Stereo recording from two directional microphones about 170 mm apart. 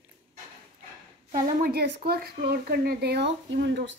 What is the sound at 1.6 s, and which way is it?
Speech, 70° right (ahead or behind).